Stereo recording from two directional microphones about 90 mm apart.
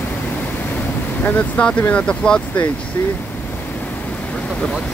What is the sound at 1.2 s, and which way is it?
Speech, 15° left (ahead or behind).